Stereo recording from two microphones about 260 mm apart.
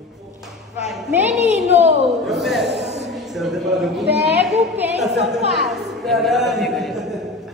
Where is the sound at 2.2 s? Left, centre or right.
Centre.